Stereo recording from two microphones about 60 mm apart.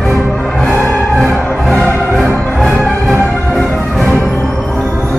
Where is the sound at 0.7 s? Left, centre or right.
Left.